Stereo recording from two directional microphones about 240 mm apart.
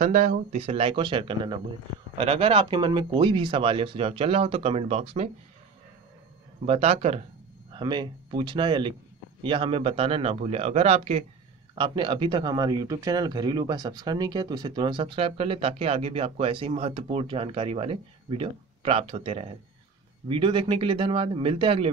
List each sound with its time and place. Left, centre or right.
0.0 s speech: right
6.6 s speech: right